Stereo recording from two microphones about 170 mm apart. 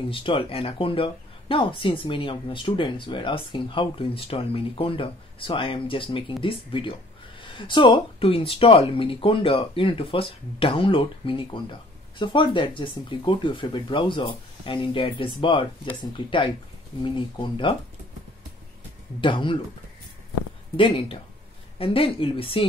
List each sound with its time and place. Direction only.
0.1 s speech: 30° left (ahead or behind)
19.2 s speech: 30° left (ahead or behind)
20.7 s speech: 30° left (ahead or behind)